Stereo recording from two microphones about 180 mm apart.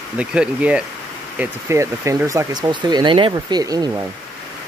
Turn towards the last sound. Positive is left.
turn(degrees=-20)  # may be behind; listen again after turning